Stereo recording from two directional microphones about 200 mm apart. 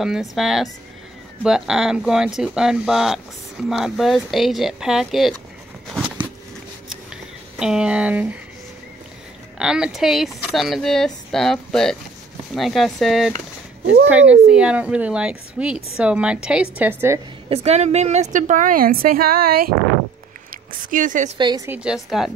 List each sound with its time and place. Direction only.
0.0 s speech: centre (ahead or behind)
7.5 s speech: 5° right (ahead or behind)
9.6 s a woman's voice: 5° right (ahead or behind)
17.5 s a woman's voice: 35° right (ahead or behind)
20.9 s a woman's voice: 40° right (ahead or behind)
21.4 s a woman's voice: 20° right (ahead or behind)
21.6 s speech: 5° right (ahead or behind)